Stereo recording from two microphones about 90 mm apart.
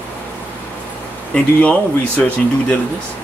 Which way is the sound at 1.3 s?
15° left (ahead or behind).